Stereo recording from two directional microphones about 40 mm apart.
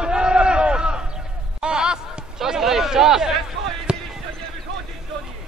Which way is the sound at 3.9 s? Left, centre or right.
Right.